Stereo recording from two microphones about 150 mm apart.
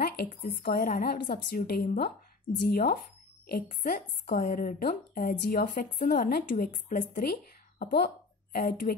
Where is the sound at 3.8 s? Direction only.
75° left (ahead or behind).